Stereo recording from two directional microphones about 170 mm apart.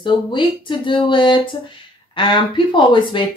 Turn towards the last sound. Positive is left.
turn(degrees=30)  # may be behind; listen again after turning